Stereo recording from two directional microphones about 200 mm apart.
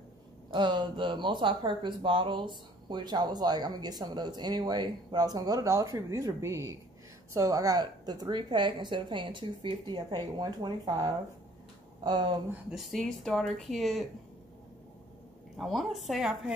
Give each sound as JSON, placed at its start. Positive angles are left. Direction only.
{"t": 0.5, "sound": "speech", "side_deg": -20}
{"t": 12.4, "sound": "speech", "side_deg": 0}
{"t": 15.5, "sound": "speech", "side_deg": 0}